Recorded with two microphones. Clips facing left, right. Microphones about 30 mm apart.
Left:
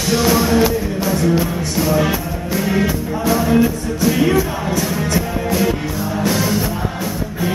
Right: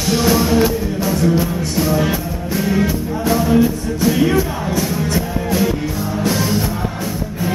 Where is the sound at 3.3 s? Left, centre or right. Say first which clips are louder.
Even; centre.